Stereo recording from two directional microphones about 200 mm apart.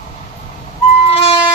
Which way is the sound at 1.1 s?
30° left (ahead or behind).